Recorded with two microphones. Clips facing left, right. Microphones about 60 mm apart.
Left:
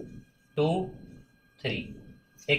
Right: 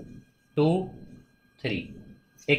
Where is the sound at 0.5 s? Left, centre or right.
Right.